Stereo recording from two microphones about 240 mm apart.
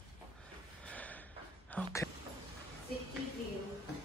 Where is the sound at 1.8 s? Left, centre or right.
Centre.